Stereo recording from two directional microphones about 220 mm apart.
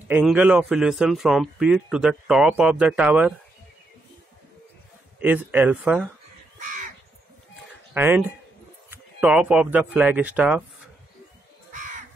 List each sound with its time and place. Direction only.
0.1 s speech: 5° right (ahead or behind)
5.2 s speech: 10° right (ahead or behind)
6.6 s crow: 35° right (ahead or behind)
7.9 s speech: 10° right (ahead or behind)